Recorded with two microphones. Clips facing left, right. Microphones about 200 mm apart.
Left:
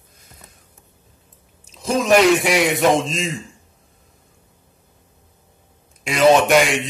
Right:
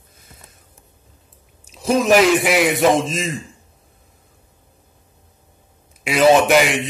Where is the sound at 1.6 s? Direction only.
10° right (ahead or behind).